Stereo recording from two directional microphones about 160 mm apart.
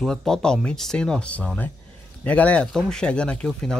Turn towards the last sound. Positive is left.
turn(degrees=5)  # may be behind; listen again after turning